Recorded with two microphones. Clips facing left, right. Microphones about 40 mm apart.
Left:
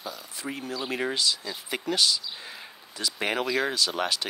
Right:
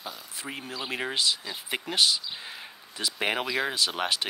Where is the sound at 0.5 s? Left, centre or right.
Right.